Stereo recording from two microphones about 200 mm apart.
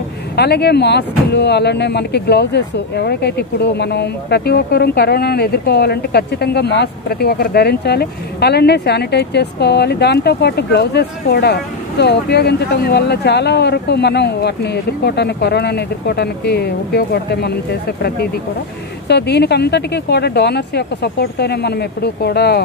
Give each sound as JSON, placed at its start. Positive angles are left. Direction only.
{"t": 0.4, "sound": "speech", "side_deg": 55}
{"t": 19.0, "sound": "speech", "side_deg": 55}